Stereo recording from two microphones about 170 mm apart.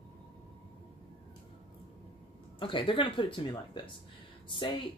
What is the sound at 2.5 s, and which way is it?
A woman's voice, 30° left (ahead or behind).